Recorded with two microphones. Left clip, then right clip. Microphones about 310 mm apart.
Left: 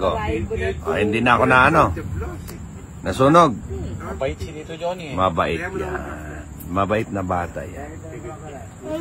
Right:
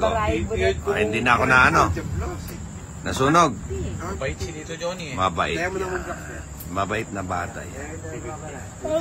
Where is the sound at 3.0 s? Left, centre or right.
Centre.